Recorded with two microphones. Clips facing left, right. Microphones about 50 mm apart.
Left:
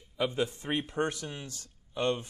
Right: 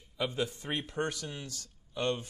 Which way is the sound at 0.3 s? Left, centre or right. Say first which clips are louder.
Left 3 dB; left.